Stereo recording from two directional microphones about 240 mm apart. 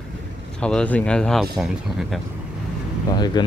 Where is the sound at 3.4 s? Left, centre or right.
Centre.